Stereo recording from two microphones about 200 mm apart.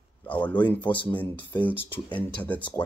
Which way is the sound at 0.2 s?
10° left (ahead or behind).